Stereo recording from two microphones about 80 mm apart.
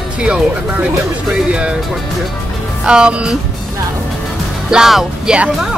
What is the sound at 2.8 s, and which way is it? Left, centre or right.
Speech, centre.